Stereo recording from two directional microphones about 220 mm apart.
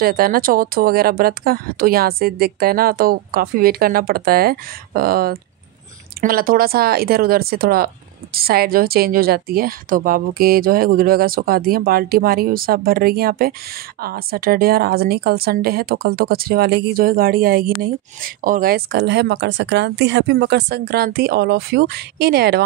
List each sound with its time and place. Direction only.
0.0 s speech: 40° right (ahead or behind)